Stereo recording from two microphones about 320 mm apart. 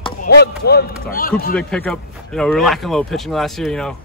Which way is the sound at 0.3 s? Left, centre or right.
Left.